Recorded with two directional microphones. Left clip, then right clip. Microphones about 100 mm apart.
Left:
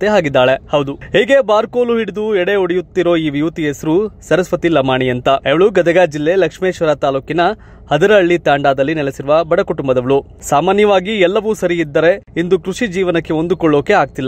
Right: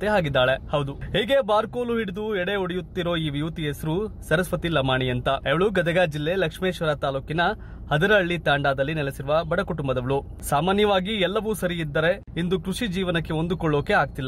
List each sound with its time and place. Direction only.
0.0 s speech: 55° left (ahead or behind)